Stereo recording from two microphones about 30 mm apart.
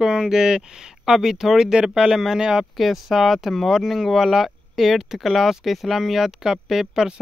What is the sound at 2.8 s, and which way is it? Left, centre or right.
Speech, centre.